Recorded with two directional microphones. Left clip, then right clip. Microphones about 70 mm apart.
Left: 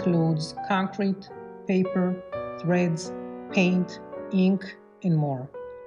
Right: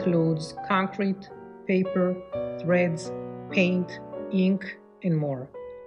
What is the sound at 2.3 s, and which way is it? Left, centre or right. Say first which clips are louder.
Music: right 2 dB; right.